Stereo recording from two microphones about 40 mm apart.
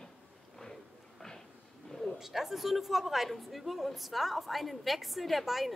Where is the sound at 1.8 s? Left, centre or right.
Centre.